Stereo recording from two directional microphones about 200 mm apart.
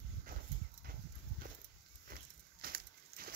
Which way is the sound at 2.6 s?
45° right (ahead or behind).